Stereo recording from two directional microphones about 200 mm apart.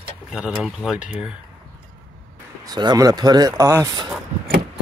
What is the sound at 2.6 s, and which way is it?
Speech, 20° right (ahead or behind).